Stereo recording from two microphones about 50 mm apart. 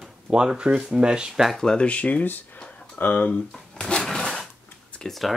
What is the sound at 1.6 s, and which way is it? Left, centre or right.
Speech, left.